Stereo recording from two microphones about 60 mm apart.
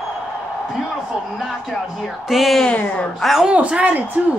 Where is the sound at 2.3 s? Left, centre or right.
Centre.